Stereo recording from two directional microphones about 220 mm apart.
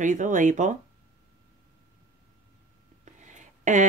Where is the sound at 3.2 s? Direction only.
35° right (ahead or behind).